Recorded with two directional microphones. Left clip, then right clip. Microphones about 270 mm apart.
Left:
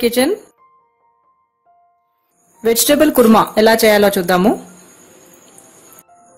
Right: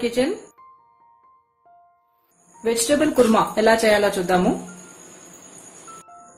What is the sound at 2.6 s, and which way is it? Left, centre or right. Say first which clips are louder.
A woman's voice: left 7 dB; left.